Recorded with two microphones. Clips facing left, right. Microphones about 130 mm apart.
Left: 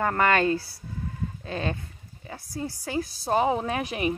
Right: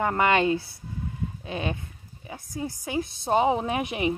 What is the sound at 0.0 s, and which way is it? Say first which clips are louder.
Speech: even; 20° right (ahead or behind).